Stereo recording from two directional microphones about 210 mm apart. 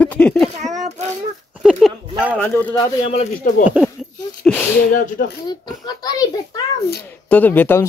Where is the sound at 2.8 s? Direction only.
30° left (ahead or behind).